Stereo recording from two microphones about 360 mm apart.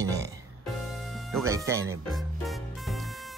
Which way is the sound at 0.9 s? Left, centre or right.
Centre.